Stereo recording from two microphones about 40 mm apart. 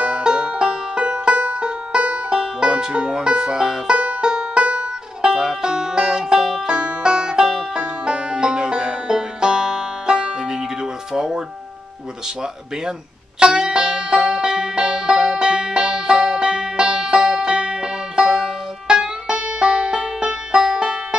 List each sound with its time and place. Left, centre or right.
0.0 s music: right
1.1 s music: right
2.0 s banjo: right
3.9 s banjo: right
4.3 s music: right
13.4 s music: right